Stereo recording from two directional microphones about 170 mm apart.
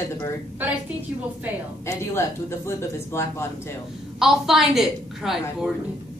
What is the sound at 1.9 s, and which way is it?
Speech, 15° left (ahead or behind).